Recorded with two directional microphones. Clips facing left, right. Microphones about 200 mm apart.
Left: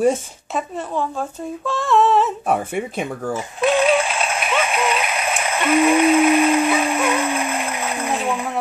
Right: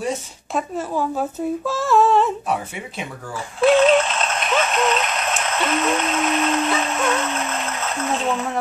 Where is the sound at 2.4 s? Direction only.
50° left (ahead or behind).